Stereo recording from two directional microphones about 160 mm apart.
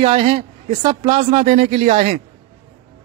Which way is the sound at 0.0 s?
35° right (ahead or behind).